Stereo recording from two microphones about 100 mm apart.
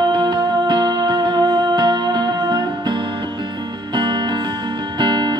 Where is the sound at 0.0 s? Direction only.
50° right (ahead or behind).